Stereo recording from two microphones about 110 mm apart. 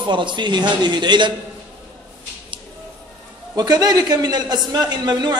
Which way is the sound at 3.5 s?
40° right (ahead or behind).